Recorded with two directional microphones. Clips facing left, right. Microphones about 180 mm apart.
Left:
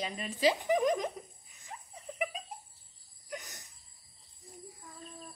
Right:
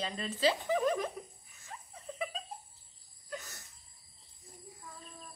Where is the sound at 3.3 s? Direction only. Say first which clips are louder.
Even; 15° left (ahead or behind).